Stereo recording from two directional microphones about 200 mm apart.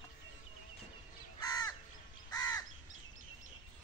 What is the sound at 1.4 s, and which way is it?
Crow, 20° left (ahead or behind).